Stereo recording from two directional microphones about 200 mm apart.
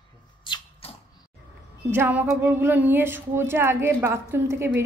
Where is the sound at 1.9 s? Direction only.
10° right (ahead or behind).